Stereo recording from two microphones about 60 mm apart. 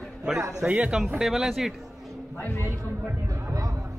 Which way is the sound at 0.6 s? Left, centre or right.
Right.